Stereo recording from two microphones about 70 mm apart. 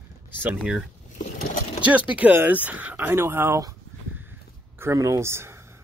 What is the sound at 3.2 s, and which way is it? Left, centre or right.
Speech, right.